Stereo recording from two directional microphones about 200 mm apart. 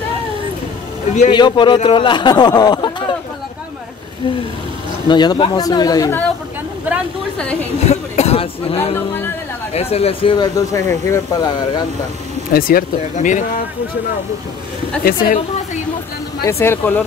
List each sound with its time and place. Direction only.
1.3 s speech: 20° left (ahead or behind)
5.0 s speech: 20° left (ahead or behind)
7.8 s a sound: 35° left (ahead or behind)
8.9 s speech: 10° left (ahead or behind)
9.8 s speech: 30° left (ahead or behind)
12.5 s speech: 45° left (ahead or behind)
15.0 s speech: 45° left (ahead or behind)
16.4 s speech: 10° left (ahead or behind)